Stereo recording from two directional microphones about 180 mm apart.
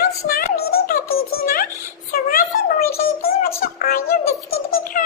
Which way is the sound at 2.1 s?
55° left (ahead or behind).